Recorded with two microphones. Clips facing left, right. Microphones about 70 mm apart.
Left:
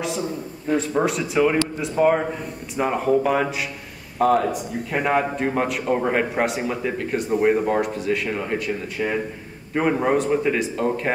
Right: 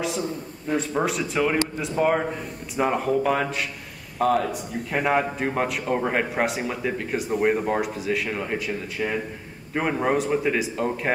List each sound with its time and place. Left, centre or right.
0.0 s speech: centre